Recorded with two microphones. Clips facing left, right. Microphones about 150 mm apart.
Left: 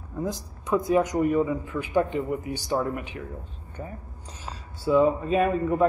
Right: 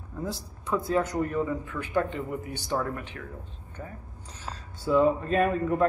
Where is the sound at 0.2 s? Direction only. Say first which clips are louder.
Left 4 dB; 15° left (ahead or behind).